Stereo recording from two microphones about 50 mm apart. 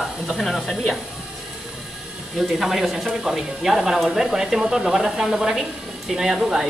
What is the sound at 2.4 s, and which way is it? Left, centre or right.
Speech, centre.